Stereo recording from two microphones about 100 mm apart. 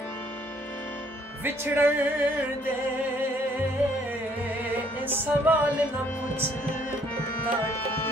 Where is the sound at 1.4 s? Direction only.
20° right (ahead or behind).